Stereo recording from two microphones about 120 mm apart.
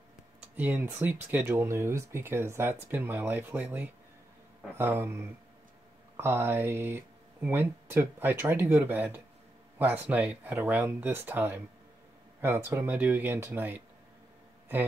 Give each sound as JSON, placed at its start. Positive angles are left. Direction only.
{"t": 0.4, "sound": "speech", "side_deg": -15}
{"t": 6.1, "sound": "speech", "side_deg": -20}